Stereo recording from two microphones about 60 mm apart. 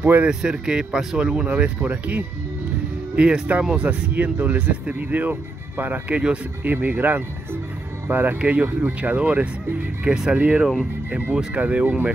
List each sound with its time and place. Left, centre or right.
0.2 s speech: centre
4.1 s speech: right
10.0 s speech: centre
10.3 s speech: right